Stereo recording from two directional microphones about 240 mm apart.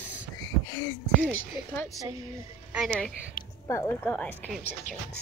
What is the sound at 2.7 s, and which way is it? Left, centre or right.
A woman's voice, centre.